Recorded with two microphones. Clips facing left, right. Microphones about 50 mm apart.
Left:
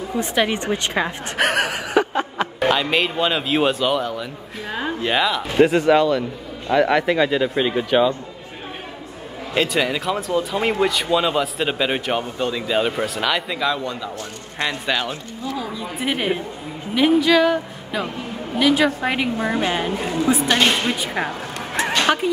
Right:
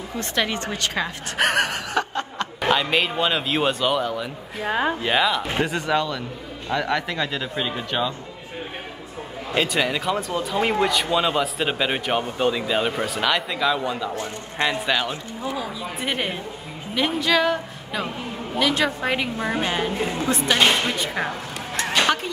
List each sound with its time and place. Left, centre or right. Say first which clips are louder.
0.1 s speech: left 4 dB; centre
1.4 s snicker: left 1 dB; centre
2.7 s speech: right 2 dB; centre
4.6 s speech: right 4 dB; right
5.0 s speech: left 1 dB; centre
5.6 s speech: left 12 dB; centre
9.5 s a man's voice: left 2 dB; centre
20.9 s speech: left 2 dB; centre
22.0 s a sound: left 4 dB; centre